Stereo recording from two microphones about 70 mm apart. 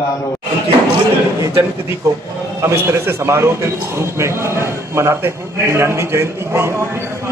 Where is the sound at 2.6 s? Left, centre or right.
Right.